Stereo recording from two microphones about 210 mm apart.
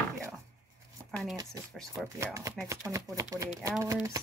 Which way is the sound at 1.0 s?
15° right (ahead or behind).